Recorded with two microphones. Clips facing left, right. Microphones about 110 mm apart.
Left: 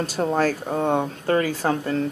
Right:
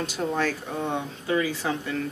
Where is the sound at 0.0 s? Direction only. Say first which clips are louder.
Left 5 dB; 40° left (ahead or behind).